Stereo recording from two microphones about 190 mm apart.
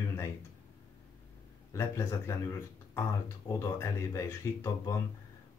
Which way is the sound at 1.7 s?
15° left (ahead or behind).